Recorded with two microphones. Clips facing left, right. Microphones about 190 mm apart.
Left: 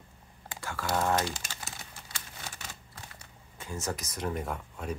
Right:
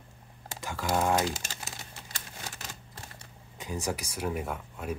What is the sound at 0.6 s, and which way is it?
Speech, 15° right (ahead or behind).